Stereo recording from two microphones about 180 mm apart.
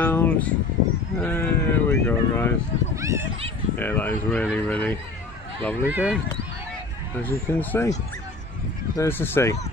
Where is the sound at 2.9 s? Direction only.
15° right (ahead or behind).